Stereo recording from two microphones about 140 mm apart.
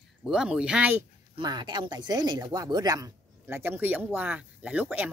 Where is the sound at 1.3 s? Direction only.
35° right (ahead or behind).